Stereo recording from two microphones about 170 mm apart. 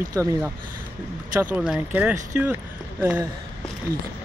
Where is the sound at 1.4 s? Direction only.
10° right (ahead or behind).